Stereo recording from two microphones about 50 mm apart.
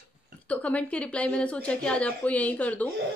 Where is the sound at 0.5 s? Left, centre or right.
Left.